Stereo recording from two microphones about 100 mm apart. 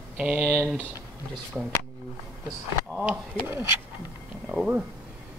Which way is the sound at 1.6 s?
5° right (ahead or behind).